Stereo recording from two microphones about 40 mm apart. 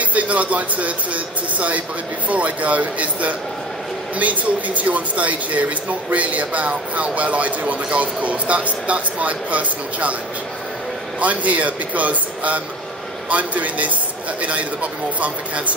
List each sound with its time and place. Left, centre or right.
0.0 s speech: right
11.1 s speech: right